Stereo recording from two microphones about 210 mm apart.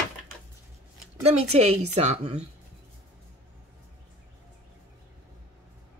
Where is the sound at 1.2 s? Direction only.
30° right (ahead or behind).